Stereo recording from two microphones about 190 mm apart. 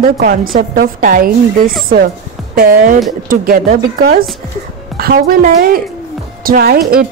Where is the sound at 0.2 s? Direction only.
50° right (ahead or behind).